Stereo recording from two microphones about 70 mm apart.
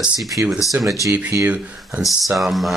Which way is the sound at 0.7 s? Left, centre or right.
Right.